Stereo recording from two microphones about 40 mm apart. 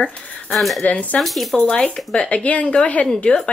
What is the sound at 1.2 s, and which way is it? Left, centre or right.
Speech, centre.